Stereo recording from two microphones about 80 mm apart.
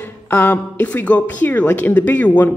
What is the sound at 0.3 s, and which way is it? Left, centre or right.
Speech, left.